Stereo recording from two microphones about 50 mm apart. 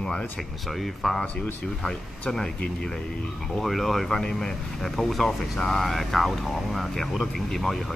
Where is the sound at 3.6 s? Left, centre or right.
Centre.